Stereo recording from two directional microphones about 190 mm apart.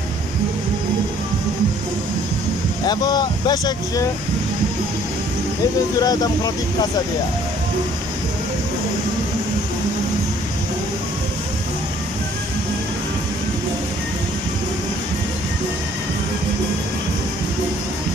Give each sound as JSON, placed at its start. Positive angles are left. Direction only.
{"t": 2.9, "sound": "speech", "side_deg": 20}
{"t": 5.9, "sound": "speech", "side_deg": 20}